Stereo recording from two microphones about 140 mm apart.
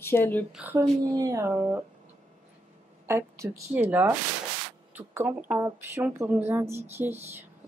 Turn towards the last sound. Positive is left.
turn(degrees=-15)  # may be behind; listen again after turning